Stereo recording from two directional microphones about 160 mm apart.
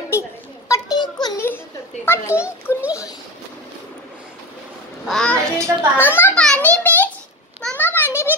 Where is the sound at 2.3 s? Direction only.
10° right (ahead or behind).